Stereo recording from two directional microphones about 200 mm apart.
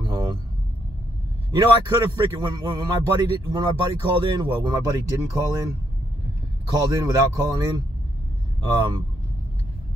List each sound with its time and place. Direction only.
0.0 s vehicle: 20° right (ahead or behind)
1.5 s a man's voice: 20° right (ahead or behind)